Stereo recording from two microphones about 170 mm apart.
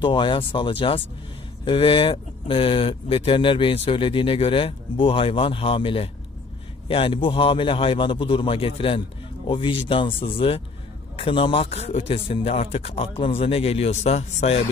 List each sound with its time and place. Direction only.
0.0 s speech: 30° left (ahead or behind)